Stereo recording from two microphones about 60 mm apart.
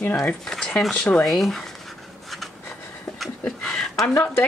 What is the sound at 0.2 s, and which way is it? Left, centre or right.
Speech, centre.